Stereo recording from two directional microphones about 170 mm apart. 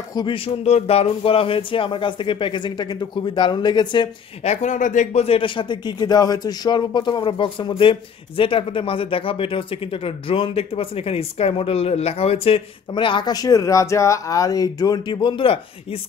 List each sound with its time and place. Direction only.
0.1 s speech: 25° left (ahead or behind)
0.7 s speech: 40° left (ahead or behind)
4.4 s speech: 40° left (ahead or behind)